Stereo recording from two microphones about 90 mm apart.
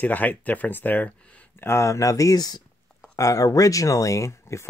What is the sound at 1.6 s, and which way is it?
Speech, 30° left (ahead or behind).